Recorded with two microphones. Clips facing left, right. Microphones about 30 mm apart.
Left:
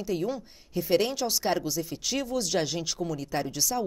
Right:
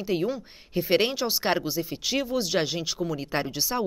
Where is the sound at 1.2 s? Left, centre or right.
Right.